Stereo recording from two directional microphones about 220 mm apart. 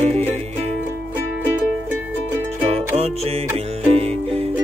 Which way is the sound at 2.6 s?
30° right (ahead or behind).